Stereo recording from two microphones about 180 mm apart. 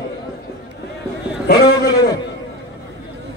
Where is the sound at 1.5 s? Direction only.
20° left (ahead or behind).